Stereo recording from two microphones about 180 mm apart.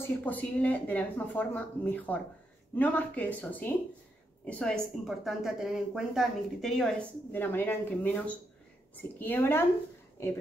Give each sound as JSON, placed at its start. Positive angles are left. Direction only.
{"t": 0.2, "sound": "a woman's voice", "side_deg": 10}